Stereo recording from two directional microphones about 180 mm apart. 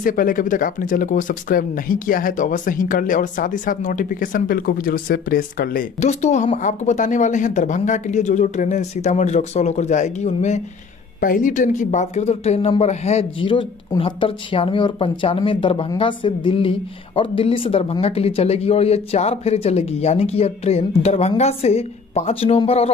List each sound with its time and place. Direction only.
0.0 s speech: 50° left (ahead or behind)
11.1 s speech: 50° left (ahead or behind); by 22.8 s 35° left (ahead or behind)